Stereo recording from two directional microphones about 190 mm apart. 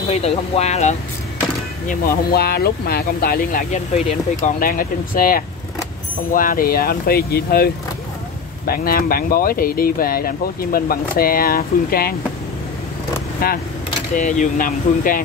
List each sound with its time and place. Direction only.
0.1 s speech: 35° left (ahead or behind)
1.9 s speech: 55° left (ahead or behind)
13.4 s speech: 55° left (ahead or behind)
14.1 s speech: 40° left (ahead or behind)